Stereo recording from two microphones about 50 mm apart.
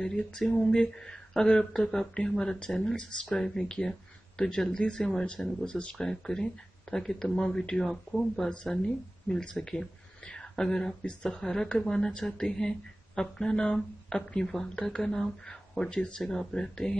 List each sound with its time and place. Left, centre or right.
0.4 s speech: centre
8.8 s speech: centre